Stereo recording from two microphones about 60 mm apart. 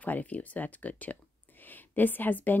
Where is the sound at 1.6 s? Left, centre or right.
Left.